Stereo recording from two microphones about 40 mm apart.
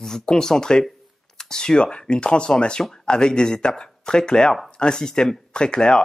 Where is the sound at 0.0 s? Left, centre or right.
Centre.